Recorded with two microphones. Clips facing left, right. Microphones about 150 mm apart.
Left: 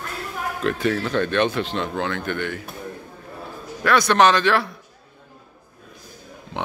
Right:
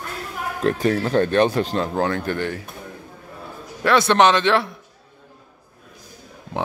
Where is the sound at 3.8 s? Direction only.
25° right (ahead or behind).